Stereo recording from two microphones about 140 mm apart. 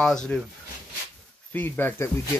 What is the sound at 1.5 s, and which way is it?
Speech, 15° left (ahead or behind).